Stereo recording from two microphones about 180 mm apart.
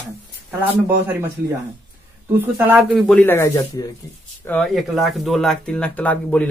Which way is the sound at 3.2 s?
10° left (ahead or behind).